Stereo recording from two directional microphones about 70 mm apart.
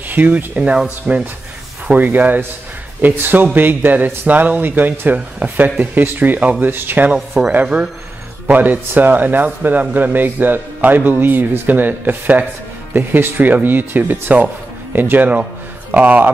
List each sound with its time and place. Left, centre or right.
0.1 s speech: right
7.2 s speech: centre
8.5 s speech: right